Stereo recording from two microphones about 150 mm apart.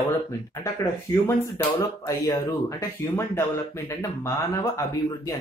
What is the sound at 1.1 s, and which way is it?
Speech, 15° left (ahead or behind).